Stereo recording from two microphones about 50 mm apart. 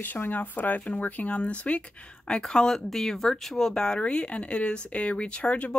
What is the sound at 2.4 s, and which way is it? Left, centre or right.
Speech, centre.